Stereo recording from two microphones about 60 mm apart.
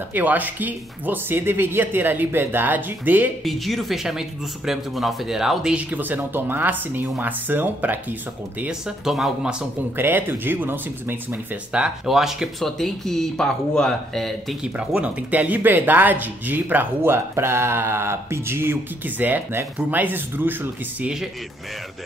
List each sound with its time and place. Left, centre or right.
0.1 s speech: right
3.4 s speech: centre
5.8 s speech: right
8.6 s speech: centre
9.9 s speech: right
11.7 s speech: centre
12.6 s speech: centre
15.0 s speech: right